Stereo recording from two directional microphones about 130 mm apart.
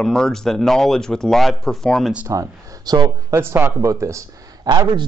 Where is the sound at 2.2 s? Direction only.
25° right (ahead or behind).